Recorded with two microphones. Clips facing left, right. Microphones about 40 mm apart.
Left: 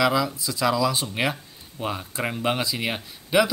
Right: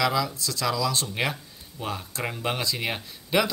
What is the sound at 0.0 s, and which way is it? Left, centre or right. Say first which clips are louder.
Speech: left 3 dB; centre.